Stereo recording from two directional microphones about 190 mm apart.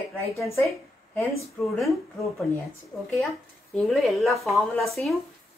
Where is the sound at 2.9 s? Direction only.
15° left (ahead or behind).